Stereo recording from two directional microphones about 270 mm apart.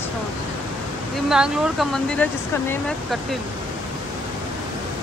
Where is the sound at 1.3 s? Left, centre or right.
Centre.